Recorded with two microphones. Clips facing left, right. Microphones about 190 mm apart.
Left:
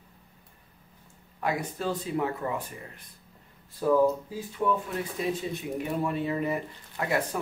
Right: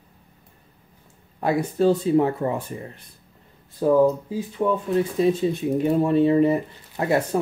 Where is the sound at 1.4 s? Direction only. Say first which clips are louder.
Right 10 dB; 30° right (ahead or behind).